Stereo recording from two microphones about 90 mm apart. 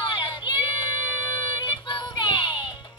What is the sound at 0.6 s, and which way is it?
Child singing, 65° left (ahead or behind).